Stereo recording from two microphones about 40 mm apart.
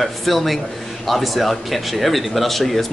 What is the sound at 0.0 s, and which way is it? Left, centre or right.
Speech, centre.